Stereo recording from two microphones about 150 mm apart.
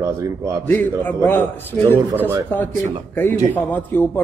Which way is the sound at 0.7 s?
10° left (ahead or behind).